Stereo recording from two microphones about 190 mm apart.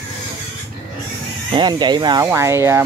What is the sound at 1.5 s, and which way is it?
Speech, 25° right (ahead or behind).